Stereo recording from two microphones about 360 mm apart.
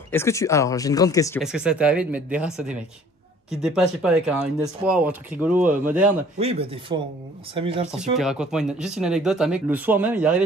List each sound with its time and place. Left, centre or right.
0.1 s speech: centre
1.4 s speech: centre
6.3 s speech: centre
8.2 s speech: centre